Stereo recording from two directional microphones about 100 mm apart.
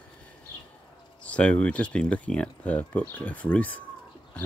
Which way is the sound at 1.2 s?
10° left (ahead or behind).